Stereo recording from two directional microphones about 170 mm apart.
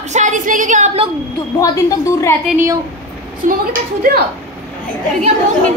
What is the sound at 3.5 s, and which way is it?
Speech, 55° right (ahead or behind).